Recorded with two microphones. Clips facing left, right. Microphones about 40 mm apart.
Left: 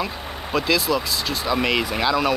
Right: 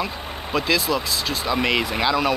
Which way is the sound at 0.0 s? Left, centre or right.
Centre.